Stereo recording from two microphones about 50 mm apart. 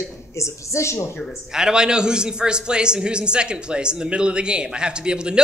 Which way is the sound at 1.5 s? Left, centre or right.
Centre.